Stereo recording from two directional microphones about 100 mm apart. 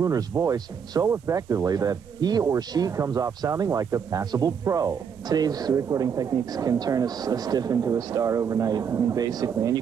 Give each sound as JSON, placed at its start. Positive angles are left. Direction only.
{"t": 0.0, "sound": "speech", "side_deg": -35}